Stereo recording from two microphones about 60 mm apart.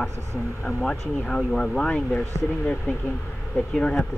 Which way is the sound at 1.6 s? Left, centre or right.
Centre.